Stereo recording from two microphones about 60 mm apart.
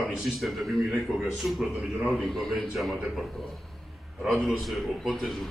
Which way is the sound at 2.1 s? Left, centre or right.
Centre.